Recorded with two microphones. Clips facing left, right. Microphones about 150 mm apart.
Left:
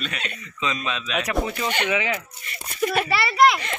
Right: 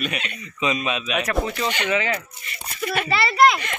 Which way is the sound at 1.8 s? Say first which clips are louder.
Right 1 dB; 10° left (ahead or behind).